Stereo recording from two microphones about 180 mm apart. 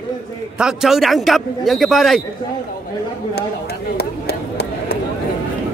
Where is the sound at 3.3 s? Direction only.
65° left (ahead or behind).